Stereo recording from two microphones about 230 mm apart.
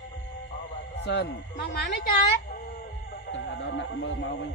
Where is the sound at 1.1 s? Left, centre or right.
Left.